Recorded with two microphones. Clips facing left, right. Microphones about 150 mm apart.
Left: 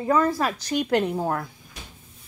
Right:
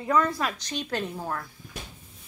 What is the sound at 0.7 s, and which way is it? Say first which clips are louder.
Speech: left 9 dB; 55° left (ahead or behind).